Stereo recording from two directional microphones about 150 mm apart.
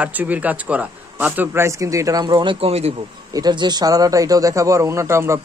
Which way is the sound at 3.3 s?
30° right (ahead or behind).